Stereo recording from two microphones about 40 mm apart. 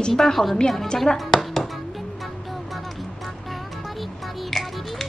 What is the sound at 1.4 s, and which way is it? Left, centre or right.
Music, centre.